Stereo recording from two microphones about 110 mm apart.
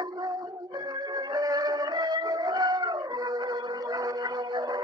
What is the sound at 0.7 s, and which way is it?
Music, 40° right (ahead or behind).